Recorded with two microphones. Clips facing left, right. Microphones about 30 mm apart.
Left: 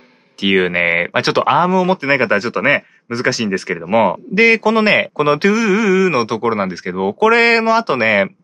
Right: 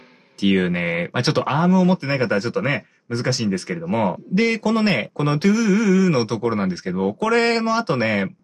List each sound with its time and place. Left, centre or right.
0.4 s speech: left
3.9 s speech: left
5.5 s speech: left
6.1 s speech: left